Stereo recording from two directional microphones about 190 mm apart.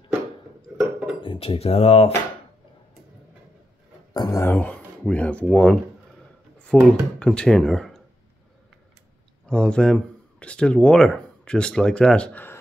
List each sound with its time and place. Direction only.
0.7 s a sound: 5° right (ahead or behind)
1.2 s speech: 25° left (ahead or behind)
4.1 s speech: 20° left (ahead or behind); by 8.0 s centre (ahead or behind)
9.5 s speech: 5° left (ahead or behind)